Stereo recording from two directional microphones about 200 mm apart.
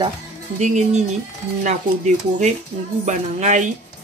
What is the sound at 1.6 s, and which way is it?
Speech, 35° right (ahead or behind).